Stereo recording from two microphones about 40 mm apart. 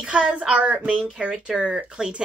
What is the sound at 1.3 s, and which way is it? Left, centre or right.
Speech, centre.